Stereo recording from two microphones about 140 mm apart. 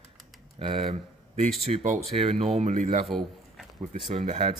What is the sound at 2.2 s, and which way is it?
Speech, 50° right (ahead or behind).